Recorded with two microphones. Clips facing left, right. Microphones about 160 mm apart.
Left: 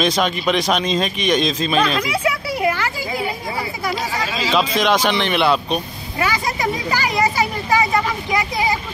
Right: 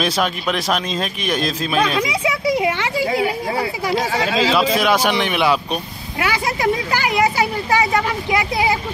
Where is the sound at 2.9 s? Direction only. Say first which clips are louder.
Right 5 dB; 70° right (ahead or behind).